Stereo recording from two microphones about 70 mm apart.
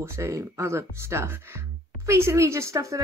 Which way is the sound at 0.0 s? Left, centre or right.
Right.